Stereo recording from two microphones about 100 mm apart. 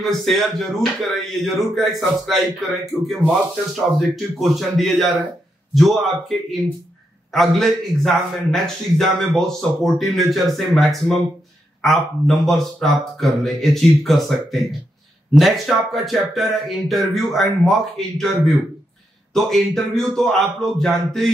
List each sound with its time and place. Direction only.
0.0 s a man's voice: centre (ahead or behind)